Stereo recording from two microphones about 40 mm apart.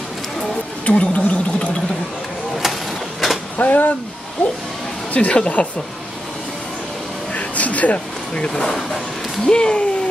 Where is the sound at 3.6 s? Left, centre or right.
Left.